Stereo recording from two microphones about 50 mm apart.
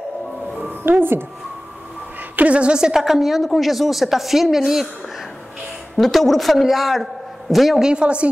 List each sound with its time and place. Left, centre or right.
0.8 s speech: right
2.3 s a woman's voice: right
2.9 s a woman's voice: centre
5.9 s a man's voice: centre
7.8 s a woman's voice: centre